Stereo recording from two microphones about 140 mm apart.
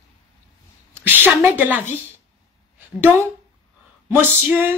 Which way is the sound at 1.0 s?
15° right (ahead or behind).